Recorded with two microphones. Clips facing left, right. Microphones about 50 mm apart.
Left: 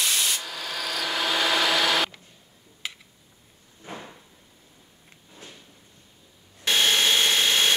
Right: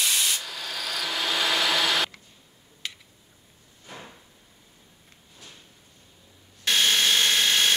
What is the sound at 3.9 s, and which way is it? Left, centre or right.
Drawer open or close, left.